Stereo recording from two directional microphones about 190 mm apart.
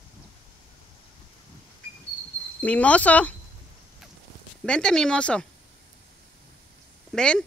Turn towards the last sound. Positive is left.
turn(degrees=5)  # may be behind; listen again after turning